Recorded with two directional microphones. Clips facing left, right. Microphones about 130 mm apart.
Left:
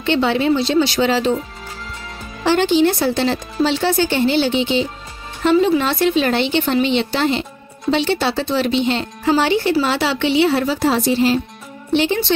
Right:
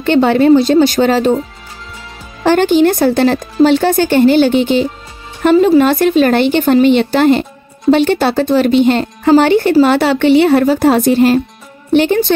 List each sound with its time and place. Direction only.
0.0 s speech: 50° right (ahead or behind)
2.4 s speech: 50° right (ahead or behind)